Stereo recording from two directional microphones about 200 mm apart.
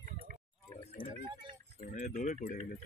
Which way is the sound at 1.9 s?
40° left (ahead or behind).